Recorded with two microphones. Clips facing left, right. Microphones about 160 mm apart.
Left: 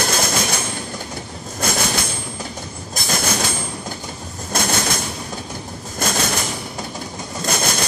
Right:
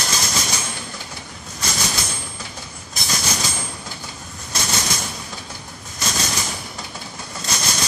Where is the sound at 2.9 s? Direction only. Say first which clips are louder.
Left 4 dB; 50° left (ahead or behind).